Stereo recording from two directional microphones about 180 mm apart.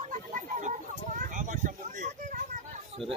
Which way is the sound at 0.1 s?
45° right (ahead or behind).